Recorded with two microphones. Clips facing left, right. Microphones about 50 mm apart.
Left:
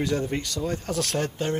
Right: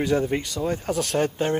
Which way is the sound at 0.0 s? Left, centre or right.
Centre.